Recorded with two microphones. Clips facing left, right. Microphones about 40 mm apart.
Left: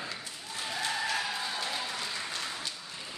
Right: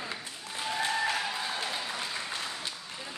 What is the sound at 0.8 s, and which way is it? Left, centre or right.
Applause, centre.